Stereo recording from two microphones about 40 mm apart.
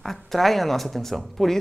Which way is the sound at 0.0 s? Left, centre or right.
Centre.